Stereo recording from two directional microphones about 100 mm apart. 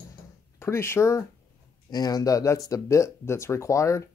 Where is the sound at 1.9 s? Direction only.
40° left (ahead or behind).